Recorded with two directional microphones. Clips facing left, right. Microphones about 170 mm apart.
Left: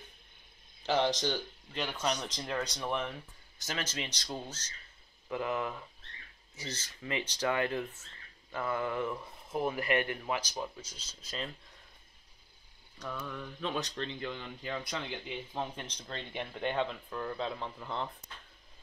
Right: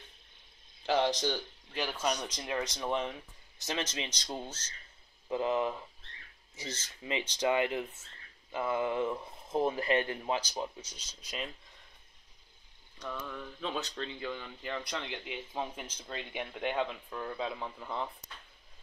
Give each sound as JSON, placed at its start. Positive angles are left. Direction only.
{"t": 0.8, "sound": "speech", "side_deg": 0}
{"t": 2.7, "sound": "speech", "side_deg": -20}
{"t": 13.0, "sound": "speech", "side_deg": 5}
{"t": 13.3, "sound": "mantra", "side_deg": -5}
{"t": 14.4, "sound": "speech", "side_deg": 10}